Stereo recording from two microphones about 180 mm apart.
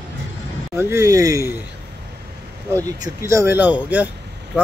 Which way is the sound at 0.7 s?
15° right (ahead or behind).